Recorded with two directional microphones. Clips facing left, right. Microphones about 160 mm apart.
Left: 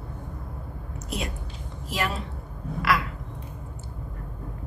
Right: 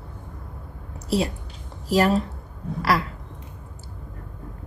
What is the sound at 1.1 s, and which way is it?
A woman's voice, 30° right (ahead or behind).